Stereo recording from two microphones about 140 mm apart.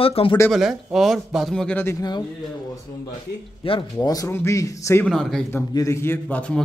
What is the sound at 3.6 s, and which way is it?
Speech, 40° left (ahead or behind).